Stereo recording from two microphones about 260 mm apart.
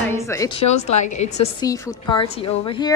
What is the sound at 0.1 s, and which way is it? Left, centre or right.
A woman's voice, centre.